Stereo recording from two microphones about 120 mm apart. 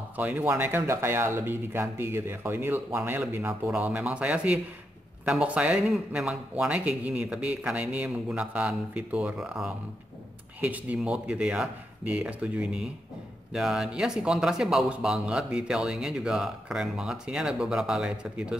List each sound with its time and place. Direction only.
0.2 s a man's voice: 15° right (ahead or behind)